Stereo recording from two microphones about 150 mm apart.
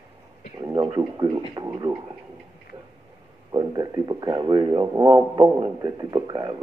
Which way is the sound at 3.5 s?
25° right (ahead or behind).